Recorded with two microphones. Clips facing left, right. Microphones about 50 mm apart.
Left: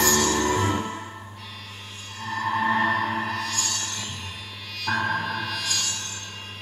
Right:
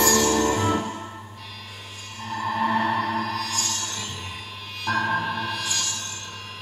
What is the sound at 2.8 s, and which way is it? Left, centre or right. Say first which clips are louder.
Music: even; left.